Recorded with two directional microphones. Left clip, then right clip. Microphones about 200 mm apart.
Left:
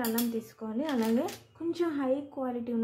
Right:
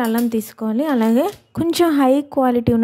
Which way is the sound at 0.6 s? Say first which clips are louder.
Right 13 dB; 55° right (ahead or behind).